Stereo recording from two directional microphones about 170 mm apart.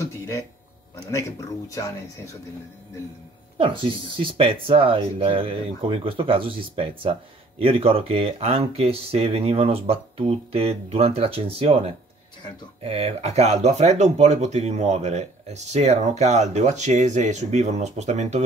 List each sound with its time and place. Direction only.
1.7 s speech: 20° left (ahead or behind)
3.5 s speech: 30° right (ahead or behind)